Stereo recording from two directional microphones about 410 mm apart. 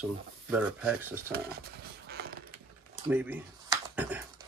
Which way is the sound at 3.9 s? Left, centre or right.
Centre.